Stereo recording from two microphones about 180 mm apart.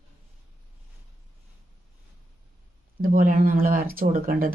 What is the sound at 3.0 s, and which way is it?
Speech, 50° right (ahead or behind).